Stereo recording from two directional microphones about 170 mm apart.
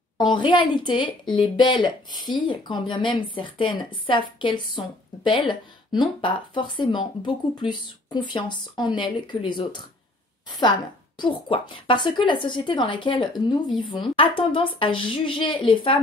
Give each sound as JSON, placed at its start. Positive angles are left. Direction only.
{"t": 0.2, "sound": "speech", "side_deg": 25}
{"t": 11.1, "sound": "speech", "side_deg": 30}